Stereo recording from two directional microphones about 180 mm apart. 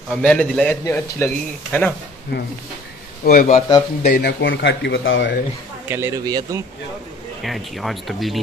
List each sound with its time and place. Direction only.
0.1 s a man's voice: 5° left (ahead or behind)
2.3 s speech: 65° left (ahead or behind)
3.3 s speech: 45° left (ahead or behind)
4.0 s speech: 75° left (ahead or behind); by 5.4 s 90° left
5.9 s speech: 15° right (ahead or behind)
7.4 s speech: centre (ahead or behind)